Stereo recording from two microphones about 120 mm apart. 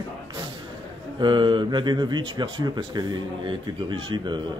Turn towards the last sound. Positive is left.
turn(degrees=-40)  # may be behind; listen again after turning